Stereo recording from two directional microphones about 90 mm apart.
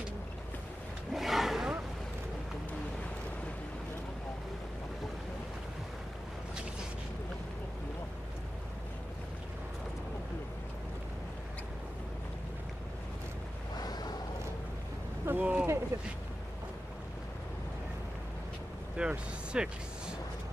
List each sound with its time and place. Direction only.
1.1 s roaring cats: centre (ahead or behind)
13.7 s a sound: 50° left (ahead or behind)
15.2 s boat: 20° right (ahead or behind)
15.9 s speech: 30° right (ahead or behind)
18.9 s speech: 10° right (ahead or behind)